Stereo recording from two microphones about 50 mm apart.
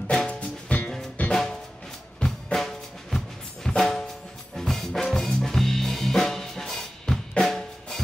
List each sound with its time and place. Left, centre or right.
0.3 s music: left
2.2 s drum: centre
3.6 s music: centre